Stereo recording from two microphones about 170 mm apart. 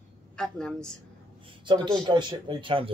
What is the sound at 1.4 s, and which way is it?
A woman's voice, 30° right (ahead or behind).